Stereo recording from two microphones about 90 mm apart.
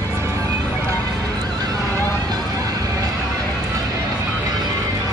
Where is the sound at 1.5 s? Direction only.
50° right (ahead or behind).